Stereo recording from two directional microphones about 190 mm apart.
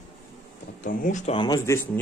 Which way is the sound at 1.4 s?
15° left (ahead or behind).